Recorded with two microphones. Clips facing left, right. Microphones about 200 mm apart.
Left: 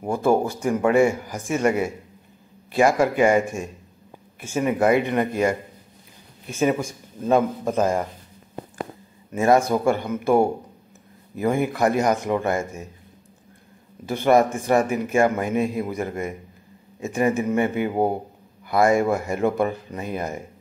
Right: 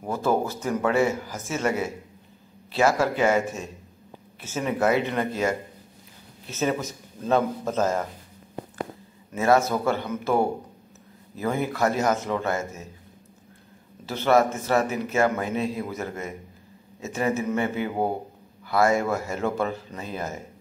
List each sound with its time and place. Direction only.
0.0 s a man's voice: 15° left (ahead or behind)
2.8 s a man's voice: 15° left (ahead or behind)
6.5 s a man's voice: 10° left (ahead or behind)
9.3 s a man's voice: 15° left (ahead or behind)
14.0 s a man's voice: 15° left (ahead or behind)
15.5 s a man's voice: 50° left (ahead or behind)
15.8 s a man's voice: 15° left (ahead or behind)